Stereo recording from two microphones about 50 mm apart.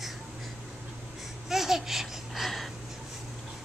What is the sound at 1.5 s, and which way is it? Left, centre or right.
Babbling, centre.